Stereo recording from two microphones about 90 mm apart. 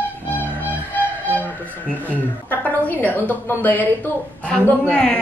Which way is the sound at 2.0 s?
15° left (ahead or behind).